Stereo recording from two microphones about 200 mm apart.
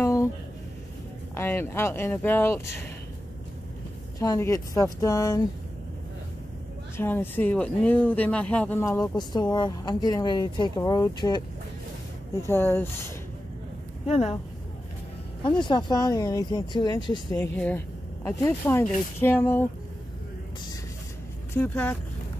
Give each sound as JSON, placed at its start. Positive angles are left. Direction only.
{"t": 0.0, "sound": "a sound", "side_deg": 15}
{"t": 1.3, "sound": "speech", "side_deg": 10}
{"t": 4.2, "sound": "speech", "side_deg": 15}
{"t": 7.0, "sound": "speech", "side_deg": 10}
{"t": 12.4, "sound": "speech", "side_deg": 10}
{"t": 14.0, "sound": "speech", "side_deg": 30}
{"t": 15.6, "sound": "speech", "side_deg": 20}
{"t": 21.5, "sound": "speech", "side_deg": 10}